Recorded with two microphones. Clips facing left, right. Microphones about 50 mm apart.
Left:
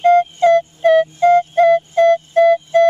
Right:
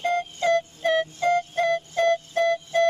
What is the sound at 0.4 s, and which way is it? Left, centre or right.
Music, centre.